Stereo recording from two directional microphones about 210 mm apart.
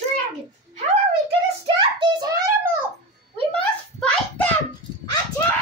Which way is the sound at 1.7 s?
20° right (ahead or behind).